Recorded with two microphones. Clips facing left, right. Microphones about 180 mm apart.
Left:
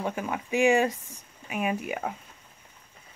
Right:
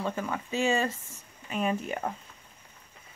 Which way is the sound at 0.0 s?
15° left (ahead or behind).